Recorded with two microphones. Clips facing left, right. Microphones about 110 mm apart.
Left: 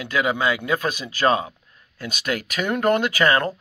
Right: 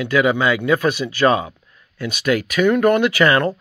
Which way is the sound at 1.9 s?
40° left (ahead or behind).